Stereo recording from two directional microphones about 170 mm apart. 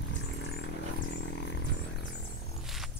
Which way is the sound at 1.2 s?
90° left.